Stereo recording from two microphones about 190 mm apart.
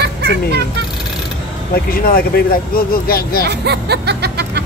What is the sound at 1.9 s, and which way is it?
Speech, 50° left (ahead or behind).